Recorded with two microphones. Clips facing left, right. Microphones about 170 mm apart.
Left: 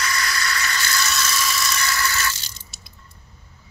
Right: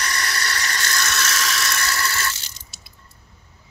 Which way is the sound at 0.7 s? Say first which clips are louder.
Left 1 dB; 45° right (ahead or behind).